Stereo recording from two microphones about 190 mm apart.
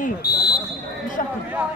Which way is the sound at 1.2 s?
45° left (ahead or behind).